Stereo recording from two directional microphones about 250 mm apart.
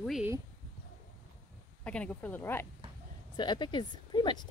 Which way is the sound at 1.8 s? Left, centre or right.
Centre.